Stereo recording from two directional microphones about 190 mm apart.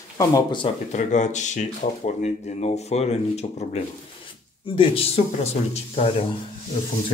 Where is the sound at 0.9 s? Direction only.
40° left (ahead or behind).